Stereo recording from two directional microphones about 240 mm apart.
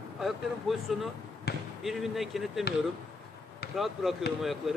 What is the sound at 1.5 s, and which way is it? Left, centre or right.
Basketball bounce, left.